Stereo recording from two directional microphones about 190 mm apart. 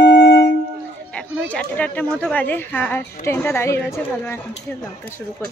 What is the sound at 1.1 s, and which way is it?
A woman's voice, 5° left (ahead or behind).